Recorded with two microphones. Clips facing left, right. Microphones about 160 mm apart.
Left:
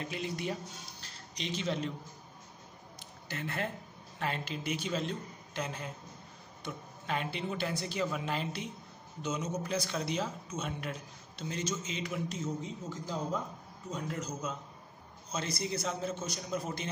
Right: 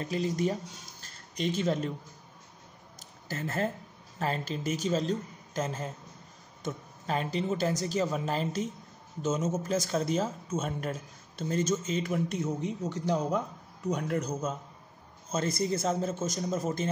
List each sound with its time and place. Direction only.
0.0 s a woman's voice: 40° right (ahead or behind)
3.3 s a woman's voice: 40° right (ahead or behind)